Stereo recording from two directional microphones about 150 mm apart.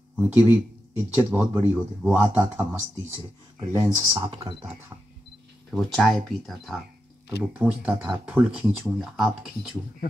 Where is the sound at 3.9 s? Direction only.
25° right (ahead or behind).